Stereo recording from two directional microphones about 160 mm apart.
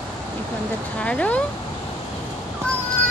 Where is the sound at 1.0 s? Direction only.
10° left (ahead or behind).